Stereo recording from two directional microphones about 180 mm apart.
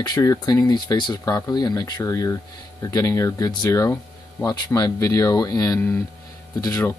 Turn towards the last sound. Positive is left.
turn(degrees=20)  # may be behind; listen again after turning